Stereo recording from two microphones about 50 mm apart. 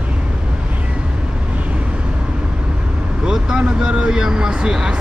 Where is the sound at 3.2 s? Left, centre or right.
Centre.